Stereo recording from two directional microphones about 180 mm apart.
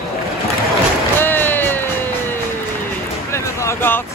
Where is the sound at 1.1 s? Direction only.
10° left (ahead or behind).